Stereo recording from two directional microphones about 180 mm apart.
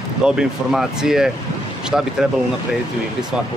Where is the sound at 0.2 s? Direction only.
5° right (ahead or behind).